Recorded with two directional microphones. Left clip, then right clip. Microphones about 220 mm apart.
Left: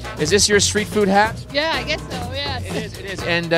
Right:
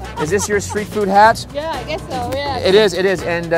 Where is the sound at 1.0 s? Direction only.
15° left (ahead or behind).